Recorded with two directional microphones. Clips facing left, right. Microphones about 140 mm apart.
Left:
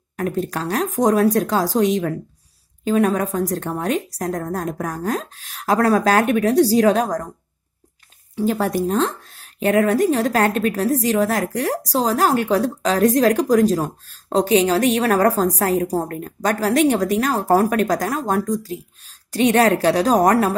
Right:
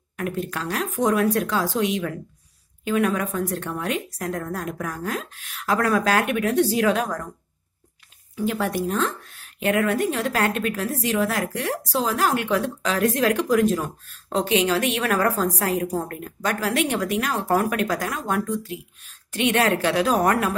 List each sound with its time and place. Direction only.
0.1 s a woman's voice: 40° left (ahead or behind)
8.4 s a woman's voice: 40° left (ahead or behind)